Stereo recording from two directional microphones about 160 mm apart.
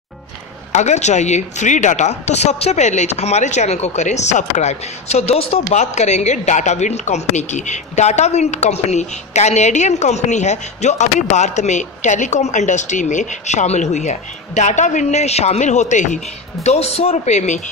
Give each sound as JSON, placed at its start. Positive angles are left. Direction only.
{"t": 0.7, "sound": "speech", "side_deg": 45}